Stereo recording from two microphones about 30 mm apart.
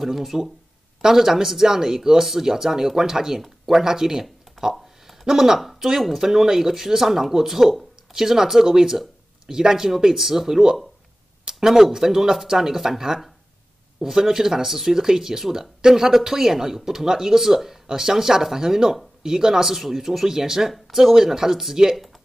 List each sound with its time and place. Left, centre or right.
0.0 s speech: centre
3.3 s speech: centre
3.8 s a sound: centre
5.6 s speech: centre
17.8 s speech: centre